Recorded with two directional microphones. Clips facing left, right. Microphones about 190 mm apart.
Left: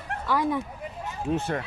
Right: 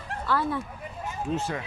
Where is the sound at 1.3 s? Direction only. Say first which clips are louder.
Left 3 dB; 60° left (ahead or behind).